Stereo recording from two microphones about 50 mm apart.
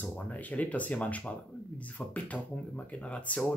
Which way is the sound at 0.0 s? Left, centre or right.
Left.